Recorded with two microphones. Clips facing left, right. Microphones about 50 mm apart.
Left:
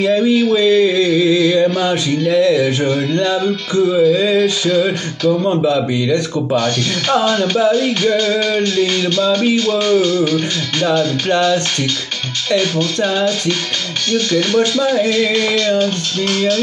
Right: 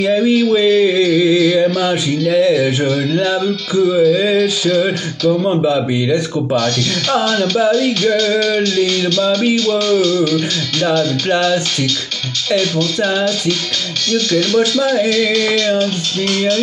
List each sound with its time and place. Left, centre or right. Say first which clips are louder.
0.0 s a man's voice: even; centre
0.6 s a sound: even; centre
3.7 s a man's voice: right 1 dB; centre
4.4 s music: even; centre
5.4 s a man's voice: even; centre
7.3 s a man's voice: even; centre
9.7 s music: even; centre
14.1 s music: even; centre